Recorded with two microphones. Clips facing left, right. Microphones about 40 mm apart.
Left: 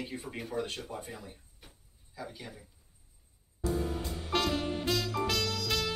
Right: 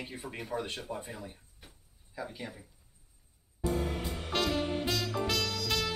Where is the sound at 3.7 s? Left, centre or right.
Right.